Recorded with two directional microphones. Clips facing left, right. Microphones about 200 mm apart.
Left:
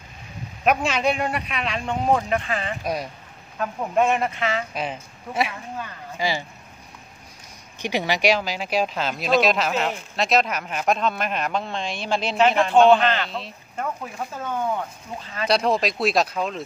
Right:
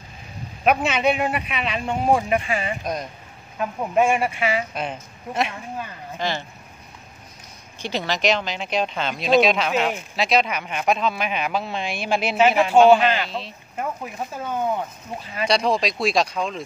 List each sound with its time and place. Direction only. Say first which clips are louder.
0.7 s speech: right 2 dB; 5° right (ahead or behind)
2.8 s speech: left 1 dB; 5° left (ahead or behind)
3.5 s speech: right 1 dB; 10° right (ahead or behind)
4.7 s speech: even; 5° left (ahead or behind)
7.8 s speech: left 1 dB; 15° left (ahead or behind); by 15.4 s 15° right (ahead or behind)
15.4 s speech: even; centre (ahead or behind)